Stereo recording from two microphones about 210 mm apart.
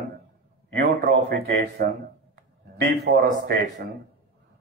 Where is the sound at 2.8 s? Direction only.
45° right (ahead or behind).